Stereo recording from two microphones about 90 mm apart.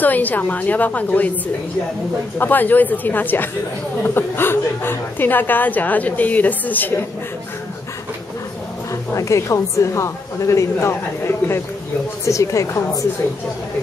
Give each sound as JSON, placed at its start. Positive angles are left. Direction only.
{"t": 0.0, "sound": "a woman's voice", "side_deg": 20}
{"t": 2.3, "sound": "a woman's voice", "side_deg": 20}
{"t": 9.1, "sound": "a woman's voice", "side_deg": 35}